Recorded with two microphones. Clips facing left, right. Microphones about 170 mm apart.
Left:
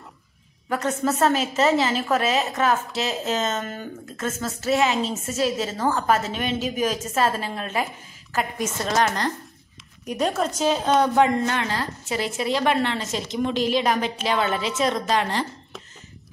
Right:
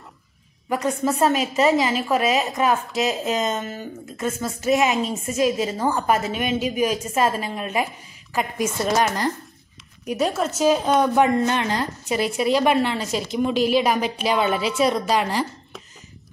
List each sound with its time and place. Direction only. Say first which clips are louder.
0.7 s a woman's voice: right 1 dB; 10° right (ahead or behind)
11.1 s a woman's voice: right 1 dB; 20° right (ahead or behind)